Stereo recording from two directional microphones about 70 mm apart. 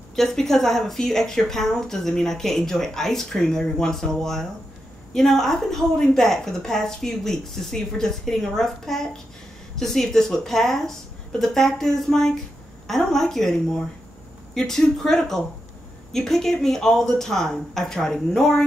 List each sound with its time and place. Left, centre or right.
0.1 s a woman's voice: centre